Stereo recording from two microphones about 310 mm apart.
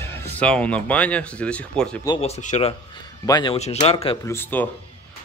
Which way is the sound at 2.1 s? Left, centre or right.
Centre.